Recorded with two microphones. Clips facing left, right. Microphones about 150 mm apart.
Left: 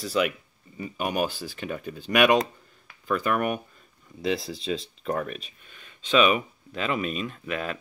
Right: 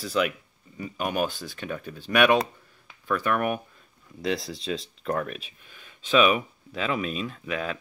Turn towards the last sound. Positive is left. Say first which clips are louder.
# even
turn(degrees=0)  # may be behind; listen again after turning